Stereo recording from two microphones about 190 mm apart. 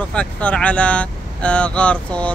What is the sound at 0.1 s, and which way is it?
Speech, 5° left (ahead or behind).